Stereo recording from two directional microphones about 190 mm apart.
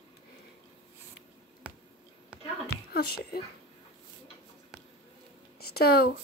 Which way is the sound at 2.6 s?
55° left (ahead or behind).